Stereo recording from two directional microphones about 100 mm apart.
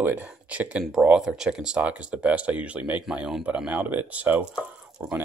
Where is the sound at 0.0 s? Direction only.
20° right (ahead or behind).